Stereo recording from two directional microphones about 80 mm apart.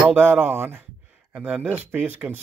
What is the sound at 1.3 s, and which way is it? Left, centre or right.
Speech, centre.